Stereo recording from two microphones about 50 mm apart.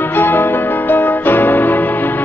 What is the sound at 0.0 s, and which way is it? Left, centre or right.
Music, left.